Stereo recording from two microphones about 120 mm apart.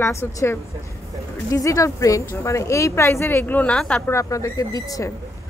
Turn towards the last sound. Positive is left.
turn(degrees=30)  # may be behind; listen again after turning